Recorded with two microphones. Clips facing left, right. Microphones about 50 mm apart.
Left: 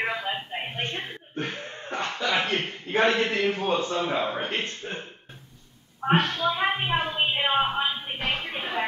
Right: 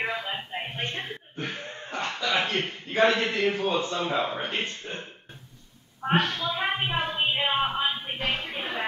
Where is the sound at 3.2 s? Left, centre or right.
Left.